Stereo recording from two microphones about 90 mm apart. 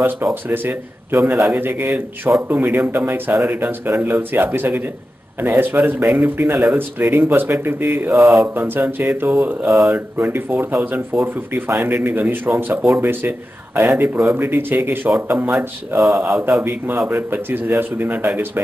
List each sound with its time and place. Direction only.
0.0 s speech: 25° right (ahead or behind)
9.7 s speech: 5° right (ahead or behind)
9.9 s speech: 20° right (ahead or behind)
16.0 s speech: 5° right (ahead or behind)
16.6 s speech: 25° right (ahead or behind)